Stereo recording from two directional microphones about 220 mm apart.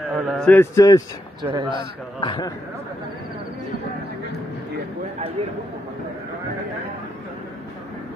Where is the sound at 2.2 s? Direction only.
20° left (ahead or behind).